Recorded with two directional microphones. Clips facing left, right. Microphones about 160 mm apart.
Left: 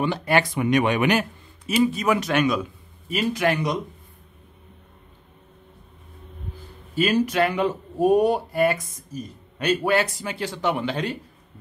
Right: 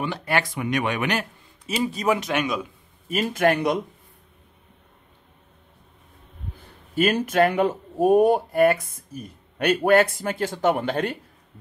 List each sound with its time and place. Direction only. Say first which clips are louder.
0.0 s speech: left 4 dB; 25° left (ahead or behind)
1.8 s speech: left 3 dB; 30° right (ahead or behind)
2.1 s a man's voice: left 3 dB; 15° right (ahead or behind)
3.1 s speech: right 2 dB; 50° right (ahead or behind)
6.6 s speech: right 2 dB; 55° right (ahead or behind)